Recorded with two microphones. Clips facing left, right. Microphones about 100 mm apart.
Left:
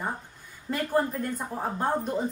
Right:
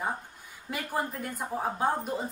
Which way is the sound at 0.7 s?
10° right (ahead or behind).